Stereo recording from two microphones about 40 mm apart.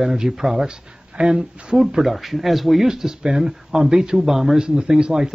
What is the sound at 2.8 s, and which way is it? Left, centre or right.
Speech, centre.